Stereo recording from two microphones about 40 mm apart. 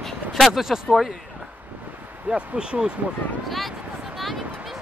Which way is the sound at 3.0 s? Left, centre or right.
Right.